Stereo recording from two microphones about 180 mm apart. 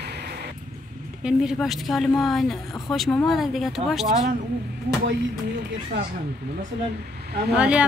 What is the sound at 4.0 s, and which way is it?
Speech, 40° right (ahead or behind).